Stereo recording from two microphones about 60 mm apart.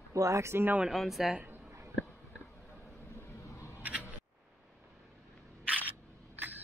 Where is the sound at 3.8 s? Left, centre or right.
Right.